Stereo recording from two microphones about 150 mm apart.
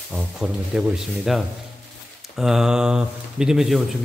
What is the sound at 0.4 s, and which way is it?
Speech, 5° right (ahead or behind).